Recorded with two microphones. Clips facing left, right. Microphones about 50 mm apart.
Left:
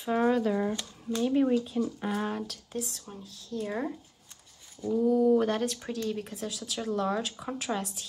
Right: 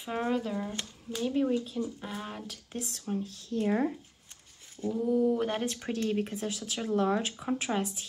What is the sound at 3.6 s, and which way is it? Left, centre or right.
Speech, centre.